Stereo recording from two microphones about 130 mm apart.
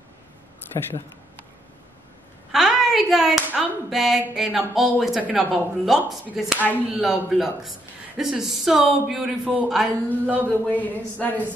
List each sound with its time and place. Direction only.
2.5 s speech: centre (ahead or behind)
10.3 s speech: 10° left (ahead or behind)